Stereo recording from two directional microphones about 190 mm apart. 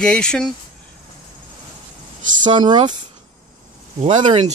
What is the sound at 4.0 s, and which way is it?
Speech, 35° right (ahead or behind).